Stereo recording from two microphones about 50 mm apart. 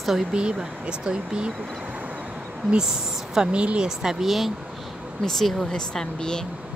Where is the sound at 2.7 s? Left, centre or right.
Centre.